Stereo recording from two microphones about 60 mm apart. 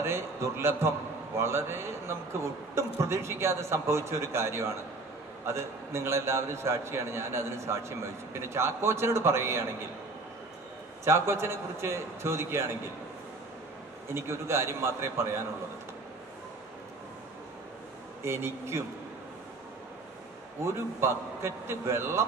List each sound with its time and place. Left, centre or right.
0.0 s a man's voice: right
11.1 s a man's voice: right
14.1 s a man's voice: right
18.2 s a man's voice: right
20.6 s a man's voice: right